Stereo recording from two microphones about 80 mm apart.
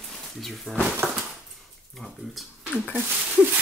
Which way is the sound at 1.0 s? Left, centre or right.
Right.